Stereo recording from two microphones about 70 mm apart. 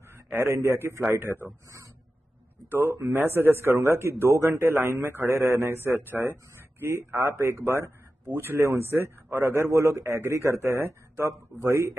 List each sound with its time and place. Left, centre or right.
0.1 s a man's voice: right
2.7 s a man's voice: right